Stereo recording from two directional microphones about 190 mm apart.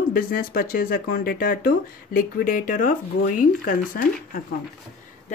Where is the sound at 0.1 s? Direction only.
50° left (ahead or behind).